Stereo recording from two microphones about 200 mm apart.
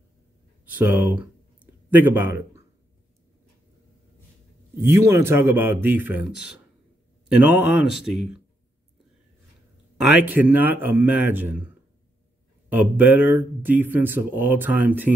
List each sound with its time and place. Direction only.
0.7 s a man's voice: 10° right (ahead or behind)
4.7 s speech: 15° right (ahead or behind)
7.3 s speech: 10° right (ahead or behind)
10.1 s speech: 10° right (ahead or behind)
12.6 s speech: 10° right (ahead or behind)